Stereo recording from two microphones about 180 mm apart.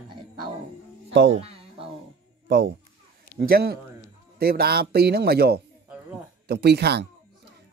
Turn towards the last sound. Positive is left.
turn(degrees=-65)  # may be behind; listen again after turning